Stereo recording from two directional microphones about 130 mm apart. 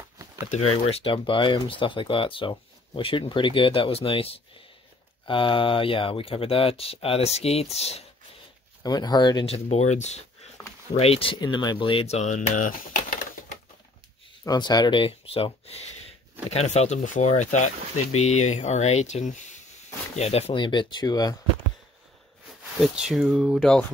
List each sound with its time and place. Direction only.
0.5 s speech: 45° left (ahead or behind)
8.8 s speech: 30° left (ahead or behind)
9.5 s speech: 55° left (ahead or behind)
11.0 s speech: 50° left (ahead or behind); by 13.6 s 85° left
14.4 s speech: 30° left (ahead or behind)
22.8 s speech: 5° right (ahead or behind)